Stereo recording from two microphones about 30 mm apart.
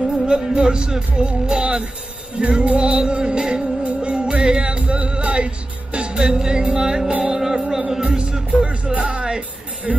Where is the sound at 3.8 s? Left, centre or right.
Right.